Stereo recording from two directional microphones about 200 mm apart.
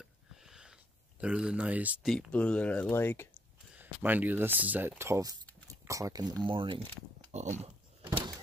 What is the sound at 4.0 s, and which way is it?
Speech, 10° right (ahead or behind).